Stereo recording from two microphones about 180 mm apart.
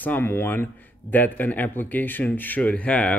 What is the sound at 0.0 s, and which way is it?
Speech, 10° left (ahead or behind).